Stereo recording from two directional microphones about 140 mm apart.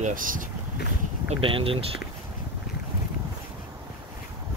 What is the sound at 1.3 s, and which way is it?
Speech, 40° right (ahead or behind).